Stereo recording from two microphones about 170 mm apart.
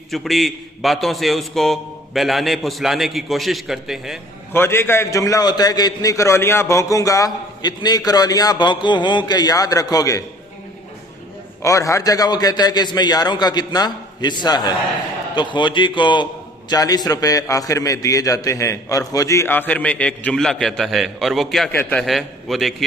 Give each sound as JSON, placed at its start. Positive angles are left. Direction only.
{"t": 0.1, "sound": "a man's voice", "side_deg": 0}
{"t": 4.5, "sound": "a man's voice", "side_deg": 15}
{"t": 11.6, "sound": "a man's voice", "side_deg": 20}
{"t": 21.7, "sound": "a man's voice", "side_deg": 10}
{"t": 22.0, "sound": "a man's voice", "side_deg": 0}